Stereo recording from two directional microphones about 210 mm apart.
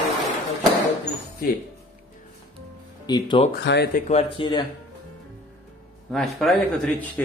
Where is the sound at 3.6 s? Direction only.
50° left (ahead or behind).